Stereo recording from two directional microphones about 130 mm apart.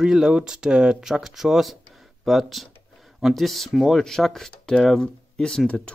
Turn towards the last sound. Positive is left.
turn(degrees=5)  # may be behind; listen again after turning